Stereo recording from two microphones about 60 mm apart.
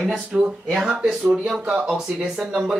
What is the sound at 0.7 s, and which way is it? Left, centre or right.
Speech, centre.